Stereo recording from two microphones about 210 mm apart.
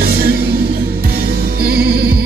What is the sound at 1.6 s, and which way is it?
Music, 50° right (ahead or behind).